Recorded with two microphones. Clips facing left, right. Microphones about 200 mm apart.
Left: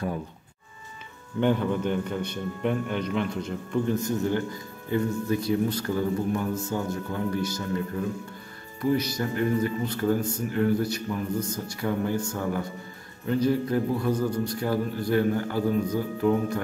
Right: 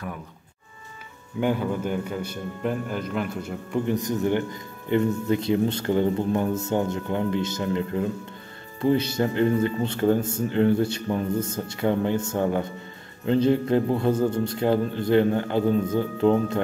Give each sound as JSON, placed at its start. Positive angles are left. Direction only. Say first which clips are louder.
{"t": 1.4, "sound": "a man's voice", "louder": "left 1 dB", "side_deg": -5}
{"t": 3.8, "sound": "a man's voice", "louder": "right 3 dB", "side_deg": -15}